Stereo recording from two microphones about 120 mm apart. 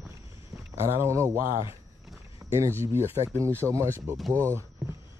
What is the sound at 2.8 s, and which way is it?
Speech, 20° right (ahead or behind).